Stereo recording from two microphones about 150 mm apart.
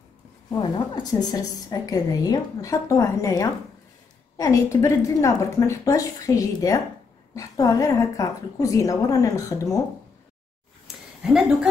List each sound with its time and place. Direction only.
0.6 s a woman's voice: 30° left (ahead or behind)
11.2 s a woman's voice: 5° right (ahead or behind)